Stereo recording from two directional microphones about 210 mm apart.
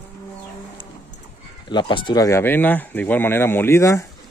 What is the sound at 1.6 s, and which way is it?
Speech, 20° left (ahead or behind).